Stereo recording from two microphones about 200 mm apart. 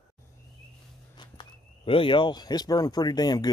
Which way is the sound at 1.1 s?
20° left (ahead or behind).